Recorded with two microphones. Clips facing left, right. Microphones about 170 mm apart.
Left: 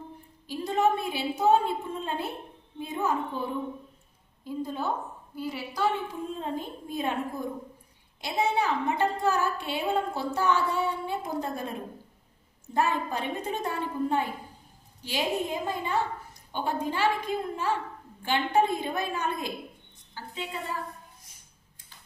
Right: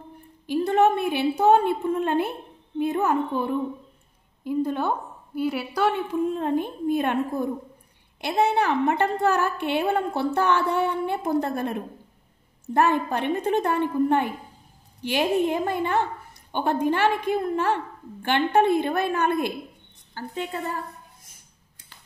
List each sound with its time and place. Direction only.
0.5 s a woman's voice: 65° right (ahead or behind)
12.7 s a woman's voice: 65° right (ahead or behind)
20.2 s a woman's voice: 50° right (ahead or behind)